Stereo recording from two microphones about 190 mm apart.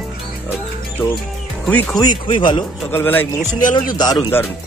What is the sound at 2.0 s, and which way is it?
Speech, 25° left (ahead or behind).